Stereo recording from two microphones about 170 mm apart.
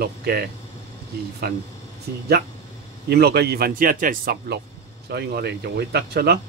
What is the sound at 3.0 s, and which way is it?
Speech, 70° right (ahead or behind).